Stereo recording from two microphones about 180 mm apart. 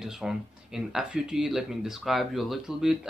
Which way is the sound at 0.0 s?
5° right (ahead or behind).